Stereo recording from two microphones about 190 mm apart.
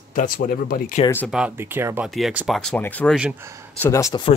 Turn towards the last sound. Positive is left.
turn(degrees=20)  # may be behind; listen again after turning